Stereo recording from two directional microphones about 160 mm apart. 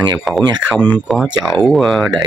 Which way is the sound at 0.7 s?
10° left (ahead or behind).